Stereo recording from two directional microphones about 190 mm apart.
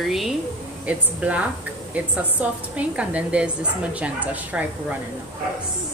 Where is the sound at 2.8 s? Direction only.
5° right (ahead or behind).